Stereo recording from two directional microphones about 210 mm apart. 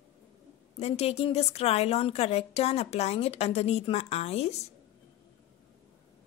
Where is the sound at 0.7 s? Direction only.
30° left (ahead or behind).